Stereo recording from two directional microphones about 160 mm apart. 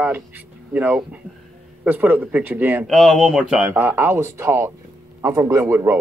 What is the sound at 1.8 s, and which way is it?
A man's voice, 10° right (ahead or behind).